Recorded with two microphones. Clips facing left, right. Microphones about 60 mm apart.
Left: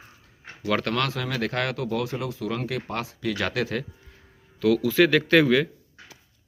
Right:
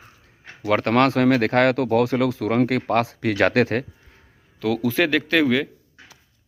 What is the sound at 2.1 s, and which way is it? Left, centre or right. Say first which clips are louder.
Speech: right 9 dB; right.